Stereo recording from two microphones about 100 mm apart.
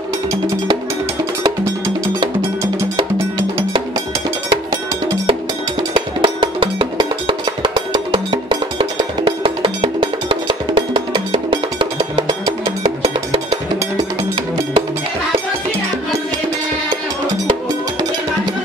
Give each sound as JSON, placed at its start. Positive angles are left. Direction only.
{"t": 5.8, "sound": "cowbell", "side_deg": -55}